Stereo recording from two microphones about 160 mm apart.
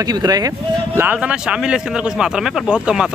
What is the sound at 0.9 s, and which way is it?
A man's voice, 10° right (ahead or behind).